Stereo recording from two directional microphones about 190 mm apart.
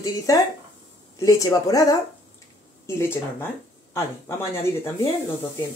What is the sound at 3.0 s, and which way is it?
Speech, 15° left (ahead or behind).